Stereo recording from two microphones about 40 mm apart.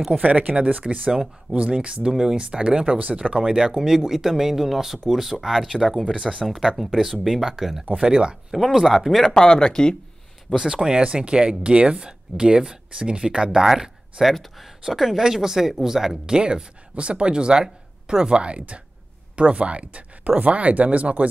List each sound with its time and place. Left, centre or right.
0.2 s speech: right
2.9 s speech: right
3.3 s speech: centre
8.5 s speech: centre
9.2 s speech: centre
10.5 s speech: centre
16.3 s speech: right